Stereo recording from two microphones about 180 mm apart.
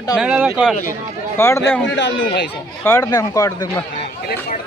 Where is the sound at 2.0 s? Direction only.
85° left.